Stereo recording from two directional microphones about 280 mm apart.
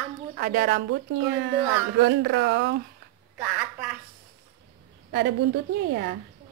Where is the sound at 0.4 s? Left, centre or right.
Right.